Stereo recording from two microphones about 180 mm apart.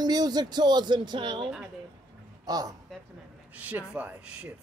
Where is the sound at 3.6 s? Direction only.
5° right (ahead or behind).